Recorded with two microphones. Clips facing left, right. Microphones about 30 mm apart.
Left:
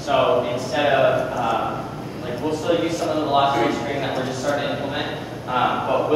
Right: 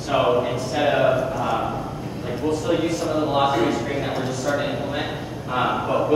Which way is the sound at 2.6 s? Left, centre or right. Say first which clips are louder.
Left 1 dB; centre.